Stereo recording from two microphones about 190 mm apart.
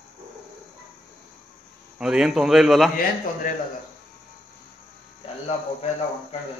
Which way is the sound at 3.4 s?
45° left (ahead or behind).